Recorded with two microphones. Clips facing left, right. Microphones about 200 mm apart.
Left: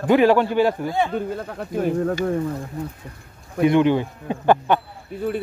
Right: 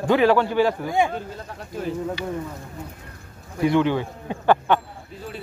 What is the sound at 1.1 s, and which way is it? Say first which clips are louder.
Speech: left 6 dB; 55° left (ahead or behind).